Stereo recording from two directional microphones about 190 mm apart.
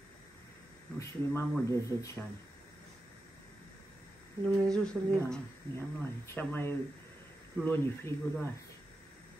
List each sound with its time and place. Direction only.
0.9 s speech: 15° left (ahead or behind)
4.5 s speech: 5° left (ahead or behind)